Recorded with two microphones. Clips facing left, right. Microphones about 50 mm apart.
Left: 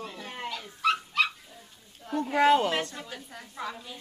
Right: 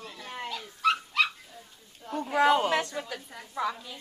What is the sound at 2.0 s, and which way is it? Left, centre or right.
Speech, centre.